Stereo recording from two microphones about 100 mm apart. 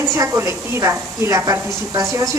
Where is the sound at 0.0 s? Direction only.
30° right (ahead or behind).